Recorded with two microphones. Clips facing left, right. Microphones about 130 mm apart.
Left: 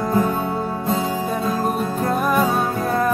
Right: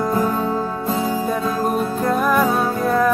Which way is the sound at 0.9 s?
Centre (ahead or behind).